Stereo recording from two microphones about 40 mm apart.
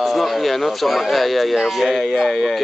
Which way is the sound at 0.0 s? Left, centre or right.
Centre.